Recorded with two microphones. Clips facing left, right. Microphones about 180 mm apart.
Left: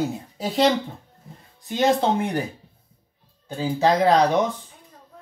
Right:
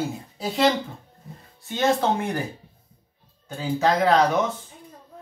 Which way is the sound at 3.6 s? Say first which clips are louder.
Left 2 dB; 35° left (ahead or behind).